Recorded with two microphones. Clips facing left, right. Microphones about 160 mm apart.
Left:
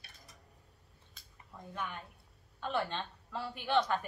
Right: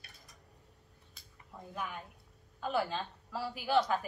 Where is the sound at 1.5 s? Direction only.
5° right (ahead or behind).